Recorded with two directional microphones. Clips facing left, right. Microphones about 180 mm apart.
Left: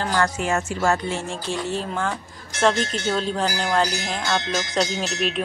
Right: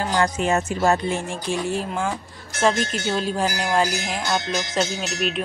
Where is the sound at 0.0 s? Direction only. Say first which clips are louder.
Right 1 dB; 15° right (ahead or behind).